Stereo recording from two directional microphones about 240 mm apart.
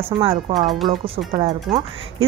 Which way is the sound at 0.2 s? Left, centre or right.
Right.